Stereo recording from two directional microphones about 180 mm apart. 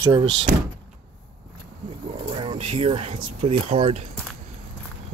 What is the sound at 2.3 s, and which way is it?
Bird, 25° right (ahead or behind).